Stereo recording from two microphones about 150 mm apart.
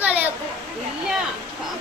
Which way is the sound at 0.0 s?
10° right (ahead or behind).